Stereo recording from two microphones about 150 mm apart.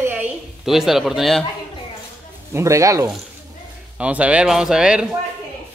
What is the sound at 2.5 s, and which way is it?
Speech, 20° right (ahead or behind).